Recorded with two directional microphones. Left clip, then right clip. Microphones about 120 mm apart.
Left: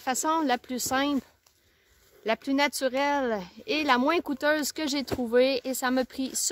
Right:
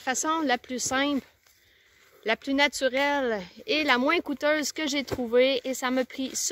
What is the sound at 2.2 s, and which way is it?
Speech, 30° left (ahead or behind).